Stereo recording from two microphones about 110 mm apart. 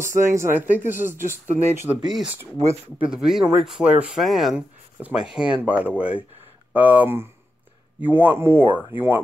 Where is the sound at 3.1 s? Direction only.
5° right (ahead or behind).